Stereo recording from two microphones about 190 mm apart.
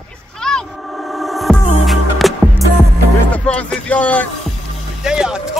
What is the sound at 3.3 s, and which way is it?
Music, 5° left (ahead or behind).